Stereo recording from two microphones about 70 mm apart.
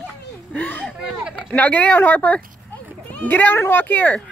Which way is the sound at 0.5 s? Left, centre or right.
Left.